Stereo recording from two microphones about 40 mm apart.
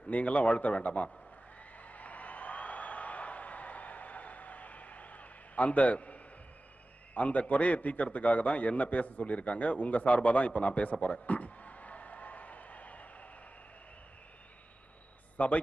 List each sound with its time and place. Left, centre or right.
0.1 s a man's voice: left
1.8 s a sound: left
7.2 s a man's voice: left
15.3 s a man's voice: left